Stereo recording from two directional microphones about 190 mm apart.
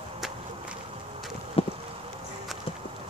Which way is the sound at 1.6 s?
30° left (ahead or behind).